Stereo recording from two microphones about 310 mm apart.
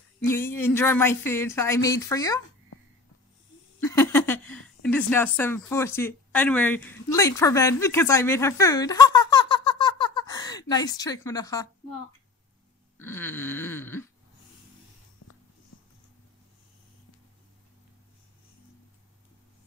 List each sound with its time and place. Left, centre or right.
0.3 s speech: centre
3.8 s speech: centre
12.9 s speech: centre
15.2 s a sound: left